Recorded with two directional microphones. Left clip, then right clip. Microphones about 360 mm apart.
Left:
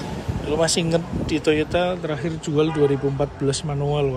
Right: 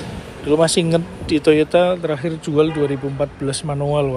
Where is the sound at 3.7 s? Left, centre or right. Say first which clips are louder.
Right 4 dB; centre.